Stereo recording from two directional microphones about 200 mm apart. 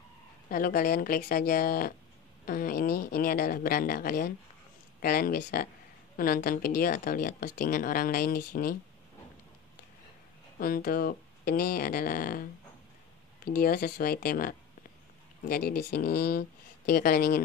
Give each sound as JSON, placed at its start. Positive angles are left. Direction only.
{"t": 0.5, "sound": "speech", "side_deg": 45}
{"t": 10.6, "sound": "speech", "side_deg": 45}
{"t": 13.6, "sound": "speech", "side_deg": 45}